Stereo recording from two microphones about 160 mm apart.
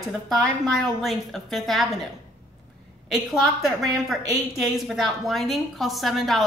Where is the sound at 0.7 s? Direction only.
Centre (ahead or behind).